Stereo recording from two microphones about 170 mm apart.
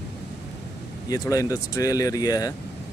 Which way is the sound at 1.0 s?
20° left (ahead or behind).